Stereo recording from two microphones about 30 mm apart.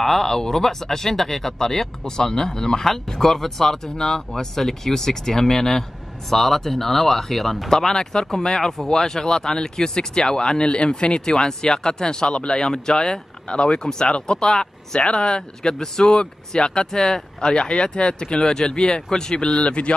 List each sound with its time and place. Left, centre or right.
0.0 s speech: centre
7.7 s speech: centre
10.6 s speech: left; by 17.2 s centre
17.4 s speech: left
19.6 s a man's voice: left